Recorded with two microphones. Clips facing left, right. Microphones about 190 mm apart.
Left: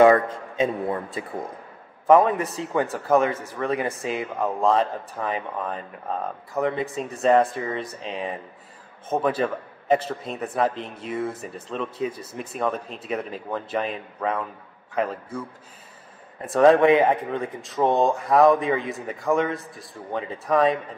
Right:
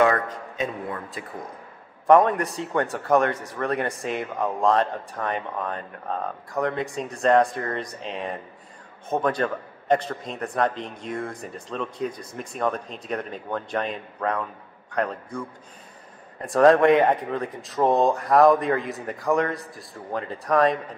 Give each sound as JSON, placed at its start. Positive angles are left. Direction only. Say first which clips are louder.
{"t": 0.0, "sound": "a man's voice", "louder": "left 5 dB", "side_deg": 25}
{"t": 2.0, "sound": "a man's voice", "louder": "even", "side_deg": 0}
{"t": 16.4, "sound": "a man's voice", "louder": "even", "side_deg": 0}